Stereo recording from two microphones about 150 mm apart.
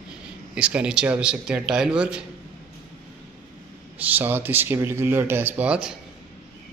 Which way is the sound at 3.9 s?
10° right (ahead or behind).